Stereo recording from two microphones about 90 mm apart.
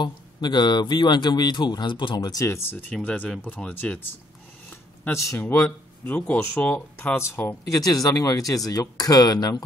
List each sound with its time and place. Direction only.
0.0 s speech: 55° left (ahead or behind)
2.4 s speech: 25° left (ahead or behind)
5.4 s speech: 20° left (ahead or behind)
7.7 s speech: 40° left (ahead or behind)